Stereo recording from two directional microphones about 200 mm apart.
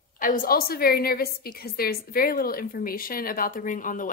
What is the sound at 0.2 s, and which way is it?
A woman's voice, 45° left (ahead or behind).